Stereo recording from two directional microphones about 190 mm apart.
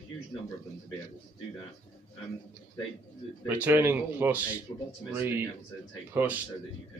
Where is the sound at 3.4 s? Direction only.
10° right (ahead or behind).